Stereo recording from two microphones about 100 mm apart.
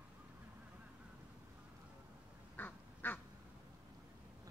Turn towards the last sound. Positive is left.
turn(degrees=20)  # may be behind; listen again after turning